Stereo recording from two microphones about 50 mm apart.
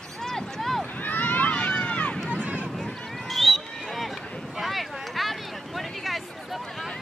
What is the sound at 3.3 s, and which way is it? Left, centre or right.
Run, centre.